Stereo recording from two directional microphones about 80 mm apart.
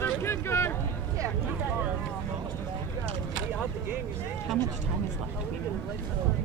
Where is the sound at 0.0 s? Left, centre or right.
Left.